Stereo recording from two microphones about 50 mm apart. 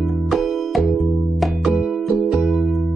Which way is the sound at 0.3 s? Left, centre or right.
Centre.